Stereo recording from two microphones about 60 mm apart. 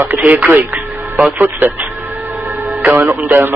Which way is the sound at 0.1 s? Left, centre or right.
Right.